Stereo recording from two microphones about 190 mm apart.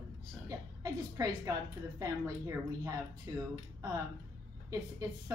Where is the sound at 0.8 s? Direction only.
20° right (ahead or behind).